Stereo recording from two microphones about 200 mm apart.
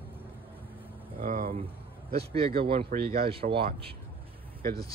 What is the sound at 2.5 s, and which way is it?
Speech, 50° right (ahead or behind).